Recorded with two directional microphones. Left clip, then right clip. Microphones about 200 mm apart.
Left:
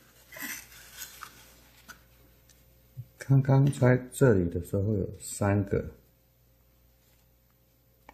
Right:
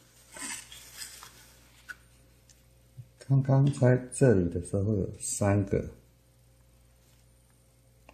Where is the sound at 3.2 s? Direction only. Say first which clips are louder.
Left 2 dB; 20° left (ahead or behind).